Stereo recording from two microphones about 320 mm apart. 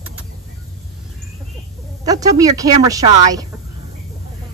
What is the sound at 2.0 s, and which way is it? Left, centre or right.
Speech, centre.